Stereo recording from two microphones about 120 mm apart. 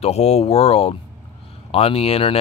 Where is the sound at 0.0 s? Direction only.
60° left (ahead or behind).